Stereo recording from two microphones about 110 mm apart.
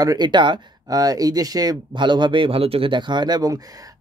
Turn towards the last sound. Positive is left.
turn(degrees=-35)  # may be behind; listen again after turning